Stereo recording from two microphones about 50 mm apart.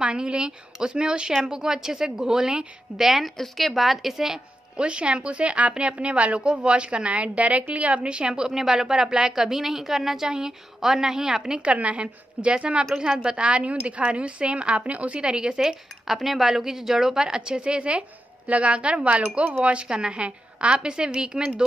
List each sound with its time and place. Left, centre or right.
0.0 s a woman's voice: right
4.7 s a woman's voice: right
11.6 s a woman's voice: right